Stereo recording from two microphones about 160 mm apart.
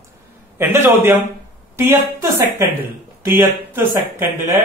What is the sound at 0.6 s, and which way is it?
Speech, 15° right (ahead or behind).